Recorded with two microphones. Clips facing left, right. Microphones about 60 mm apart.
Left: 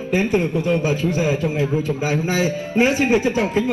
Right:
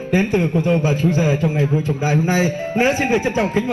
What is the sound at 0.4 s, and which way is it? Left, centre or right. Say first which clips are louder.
A man's voice: right 2 dB; right.